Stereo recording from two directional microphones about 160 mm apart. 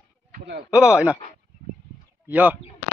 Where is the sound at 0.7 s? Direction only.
5° right (ahead or behind).